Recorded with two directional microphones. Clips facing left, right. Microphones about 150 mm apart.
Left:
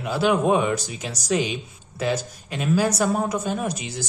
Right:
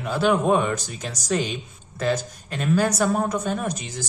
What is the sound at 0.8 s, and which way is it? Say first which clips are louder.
Speech: left 1 dB; 45° right (ahead or behind).